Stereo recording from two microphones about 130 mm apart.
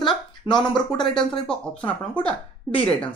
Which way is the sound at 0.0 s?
35° left (ahead or behind).